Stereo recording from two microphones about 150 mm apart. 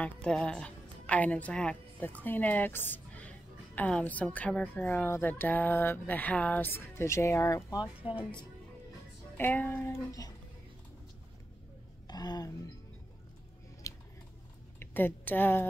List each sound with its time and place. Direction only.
0.0 s a woman's voice: 5° left (ahead or behind); by 7.8 s 20° left (ahead or behind)
7.8 s speech: 10° right (ahead or behind)
9.4 s a woman's voice: 10° left (ahead or behind)
12.1 s speech: 25° left (ahead or behind)
13.9 s a sound: 20° left (ahead or behind)
14.8 s a woman's voice: 15° left (ahead or behind)